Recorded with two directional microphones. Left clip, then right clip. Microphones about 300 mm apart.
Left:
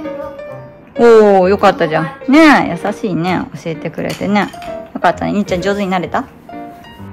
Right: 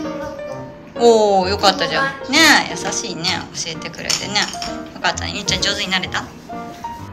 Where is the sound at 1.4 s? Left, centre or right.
Left.